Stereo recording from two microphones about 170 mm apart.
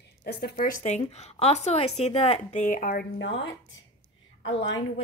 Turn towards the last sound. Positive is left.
turn(degrees=90)